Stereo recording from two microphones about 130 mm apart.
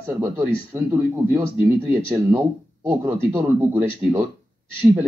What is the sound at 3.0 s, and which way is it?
Speech, 20° right (ahead or behind).